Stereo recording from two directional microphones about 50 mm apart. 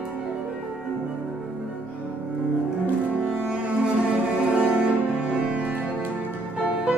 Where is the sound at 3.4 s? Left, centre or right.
Centre.